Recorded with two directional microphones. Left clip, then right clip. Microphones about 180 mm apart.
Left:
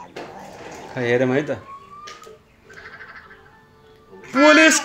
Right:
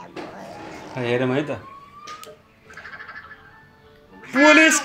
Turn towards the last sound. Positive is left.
turn(degrees=15)  # may be behind; listen again after turning